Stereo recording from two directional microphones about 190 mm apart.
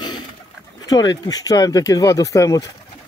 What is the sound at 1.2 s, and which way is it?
Speech, 20° left (ahead or behind).